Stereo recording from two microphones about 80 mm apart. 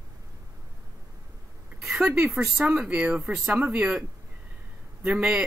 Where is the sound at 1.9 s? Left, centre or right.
Centre.